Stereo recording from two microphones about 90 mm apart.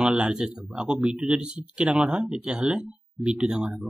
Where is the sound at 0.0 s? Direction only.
10° right (ahead or behind).